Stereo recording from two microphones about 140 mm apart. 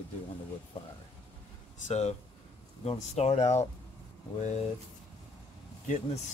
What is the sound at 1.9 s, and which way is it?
Speech, 50° left (ahead or behind).